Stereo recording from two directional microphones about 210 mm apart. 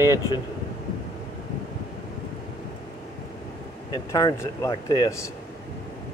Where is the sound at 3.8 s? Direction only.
15° left (ahead or behind).